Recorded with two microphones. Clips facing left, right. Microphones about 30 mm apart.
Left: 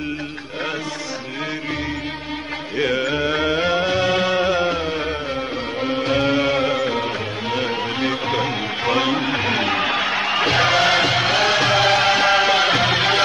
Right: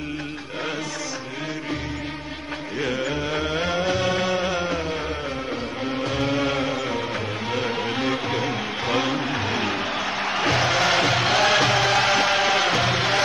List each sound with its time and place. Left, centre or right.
3.8 s music: left
6.1 s music: left
7.5 s music: centre
9.3 s music: left
10.2 s music: left
11.1 s music: centre
11.8 s music: centre
12.8 s music: left